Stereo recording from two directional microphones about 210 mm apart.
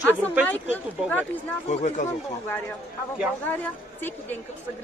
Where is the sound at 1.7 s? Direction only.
35° left (ahead or behind).